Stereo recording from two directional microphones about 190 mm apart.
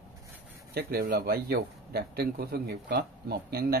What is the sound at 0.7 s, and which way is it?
Speech, 55° right (ahead or behind).